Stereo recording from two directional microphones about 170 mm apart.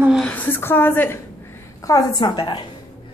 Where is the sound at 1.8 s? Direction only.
20° left (ahead or behind).